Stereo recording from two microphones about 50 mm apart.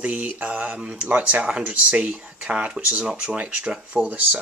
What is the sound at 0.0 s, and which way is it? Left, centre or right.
Speech, right.